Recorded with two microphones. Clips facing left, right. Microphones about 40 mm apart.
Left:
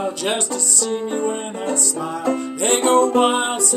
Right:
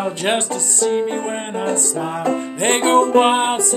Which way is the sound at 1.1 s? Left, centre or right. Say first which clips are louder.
Even; right.